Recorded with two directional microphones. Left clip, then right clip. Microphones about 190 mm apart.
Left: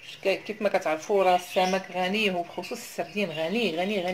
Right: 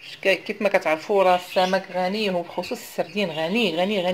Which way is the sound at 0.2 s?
20° right (ahead or behind).